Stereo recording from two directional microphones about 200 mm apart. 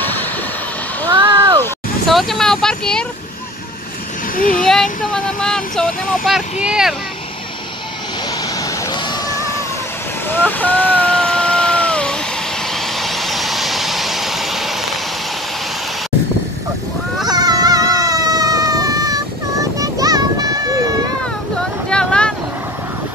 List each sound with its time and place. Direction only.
0.0 s vehicle: 10° left (ahead or behind)
1.1 s a sound: 25° right (ahead or behind)
2.0 s speech: centre (ahead or behind)
4.4 s speech: 45° left (ahead or behind)
5.1 s speech: 5° left (ahead or behind)
8.9 s a sound: 15° left (ahead or behind)
12.7 s vehicle: centre (ahead or behind)
17.3 s dog: 20° right (ahead or behind)
21.8 s vehicle: 5° left (ahead or behind)